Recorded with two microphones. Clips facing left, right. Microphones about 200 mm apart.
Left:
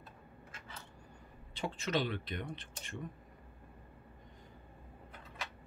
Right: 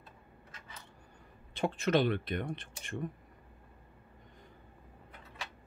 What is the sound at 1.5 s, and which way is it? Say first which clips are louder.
Speech: right 6 dB; 55° right (ahead or behind).